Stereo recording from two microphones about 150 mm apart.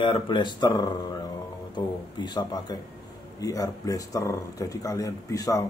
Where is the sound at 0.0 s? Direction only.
35° left (ahead or behind).